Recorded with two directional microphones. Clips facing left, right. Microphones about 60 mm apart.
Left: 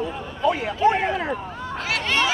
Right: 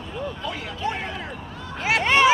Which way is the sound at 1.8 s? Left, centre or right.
Right.